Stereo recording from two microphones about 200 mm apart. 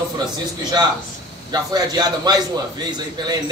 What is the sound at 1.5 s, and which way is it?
Speech, 20° right (ahead or behind).